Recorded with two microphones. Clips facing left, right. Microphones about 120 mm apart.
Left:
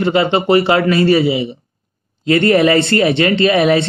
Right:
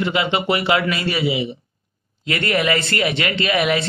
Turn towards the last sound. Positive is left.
turn(degrees=35)  # may be behind; listen again after turning